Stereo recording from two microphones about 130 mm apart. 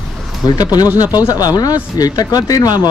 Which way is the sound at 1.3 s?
30° left (ahead or behind).